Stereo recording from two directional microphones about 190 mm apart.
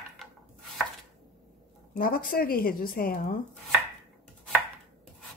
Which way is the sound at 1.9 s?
50° left (ahead or behind).